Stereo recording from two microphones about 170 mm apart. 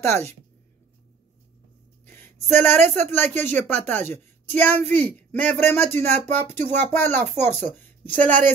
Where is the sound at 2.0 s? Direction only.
10° left (ahead or behind).